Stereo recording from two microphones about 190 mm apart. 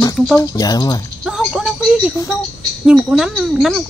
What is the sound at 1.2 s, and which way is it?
Speech, 5° right (ahead or behind).